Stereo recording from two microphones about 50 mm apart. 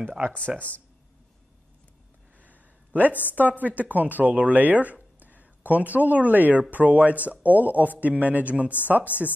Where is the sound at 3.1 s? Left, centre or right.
Left.